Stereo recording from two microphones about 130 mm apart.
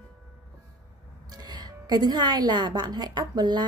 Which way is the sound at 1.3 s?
30° right (ahead or behind).